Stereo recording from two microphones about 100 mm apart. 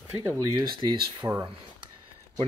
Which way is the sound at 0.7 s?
50° right (ahead or behind).